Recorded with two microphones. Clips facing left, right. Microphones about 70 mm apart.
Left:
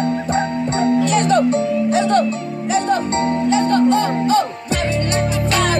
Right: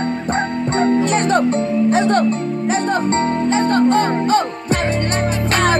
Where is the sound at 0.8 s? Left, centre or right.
Right.